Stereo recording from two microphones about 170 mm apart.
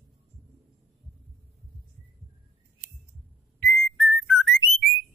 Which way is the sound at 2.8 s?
50° right (ahead or behind).